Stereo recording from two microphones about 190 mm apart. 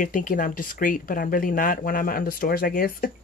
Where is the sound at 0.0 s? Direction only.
45° left (ahead or behind).